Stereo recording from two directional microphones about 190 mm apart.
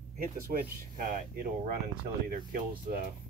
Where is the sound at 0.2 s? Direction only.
45° right (ahead or behind).